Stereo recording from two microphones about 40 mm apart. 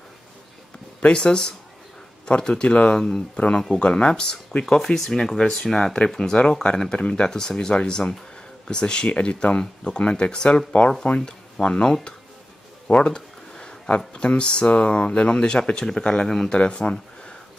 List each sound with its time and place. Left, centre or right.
1.0 s speech: left
3.5 s speech: centre; by 7.2 s left
7.2 s speech: centre
16.5 s speech: left